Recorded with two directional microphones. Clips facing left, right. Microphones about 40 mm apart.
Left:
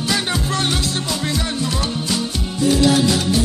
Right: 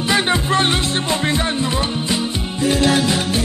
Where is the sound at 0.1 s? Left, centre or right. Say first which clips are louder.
Right 5 dB; right.